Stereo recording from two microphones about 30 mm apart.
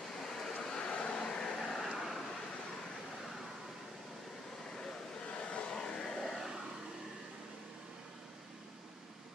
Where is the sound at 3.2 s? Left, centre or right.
Centre.